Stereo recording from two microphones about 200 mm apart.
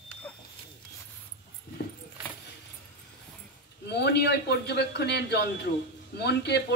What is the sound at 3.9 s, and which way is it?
A man's voice, 55° left (ahead or behind).